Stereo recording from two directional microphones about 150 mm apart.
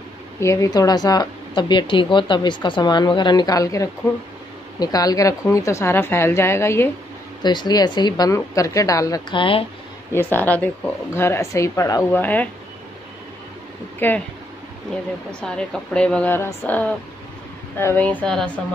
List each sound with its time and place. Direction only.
0.4 s a woman's voice: 20° left (ahead or behind)
7.4 s a woman's voice: 30° left (ahead or behind)
10.1 s speech: 10° left (ahead or behind)
13.9 s speech: 15° left (ahead or behind)
15.4 s speech: 5° left (ahead or behind)